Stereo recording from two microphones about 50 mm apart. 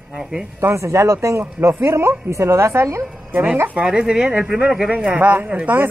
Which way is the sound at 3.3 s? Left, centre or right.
Right.